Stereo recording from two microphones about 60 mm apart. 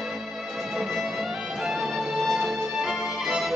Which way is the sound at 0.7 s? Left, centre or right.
Centre.